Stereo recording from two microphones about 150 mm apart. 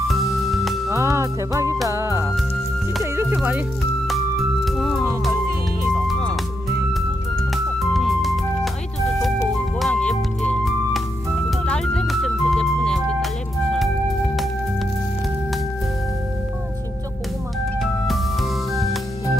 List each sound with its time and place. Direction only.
0.1 s music: centre (ahead or behind)
0.8 s music: 20° right (ahead or behind)
4.6 s music: centre (ahead or behind)
5.9 s music: centre (ahead or behind)
9.8 s music: 5° left (ahead or behind)
18.0 s music: centre (ahead or behind)